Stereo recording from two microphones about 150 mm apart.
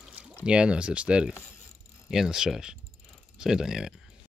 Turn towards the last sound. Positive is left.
turn(degrees=-5)  # may be behind; listen again after turning